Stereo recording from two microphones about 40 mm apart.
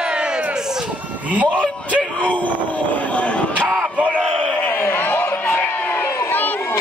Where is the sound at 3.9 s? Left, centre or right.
Right.